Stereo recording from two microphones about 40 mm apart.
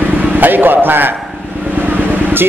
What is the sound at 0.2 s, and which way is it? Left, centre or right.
Speech, right.